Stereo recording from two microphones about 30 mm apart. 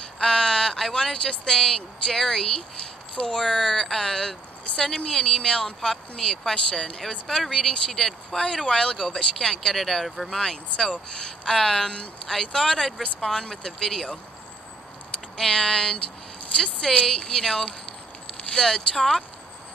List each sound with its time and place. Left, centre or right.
0.2 s a sound: left
1.1 s speech: left
3.4 s speech: centre; by 7.0 s left
7.2 s speech: centre
8.6 s speech: left
9.8 s speech: centre
10.3 s speech: centre
15.3 s speech: centre